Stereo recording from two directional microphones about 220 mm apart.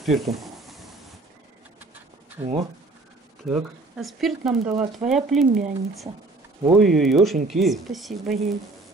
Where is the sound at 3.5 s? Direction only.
Centre (ahead or behind).